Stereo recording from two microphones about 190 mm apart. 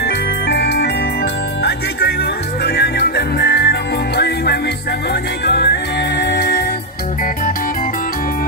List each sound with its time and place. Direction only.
0.5 s music: 60° left (ahead or behind)
5.5 s music: 60° left (ahead or behind)